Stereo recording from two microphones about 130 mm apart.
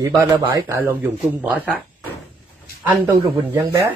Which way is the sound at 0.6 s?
15° right (ahead or behind).